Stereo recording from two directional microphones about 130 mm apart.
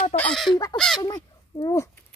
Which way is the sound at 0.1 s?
10° left (ahead or behind).